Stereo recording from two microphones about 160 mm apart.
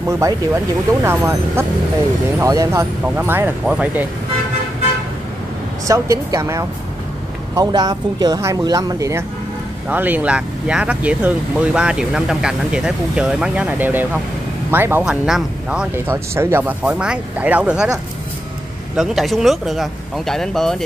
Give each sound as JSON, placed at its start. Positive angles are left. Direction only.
{"t": 0.1, "sound": "speech", "side_deg": -20}
{"t": 5.9, "sound": "speech", "side_deg": -20}
{"t": 18.9, "sound": "speech", "side_deg": 0}